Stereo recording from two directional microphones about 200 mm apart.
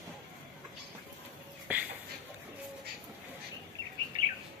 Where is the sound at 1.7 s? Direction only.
10° right (ahead or behind).